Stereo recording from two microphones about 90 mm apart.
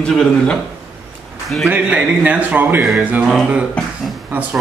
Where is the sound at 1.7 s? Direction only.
15° right (ahead or behind).